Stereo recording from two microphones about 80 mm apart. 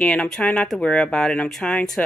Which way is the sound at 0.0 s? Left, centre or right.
Centre.